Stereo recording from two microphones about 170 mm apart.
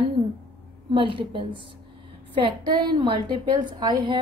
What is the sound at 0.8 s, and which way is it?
Speech, 30° right (ahead or behind).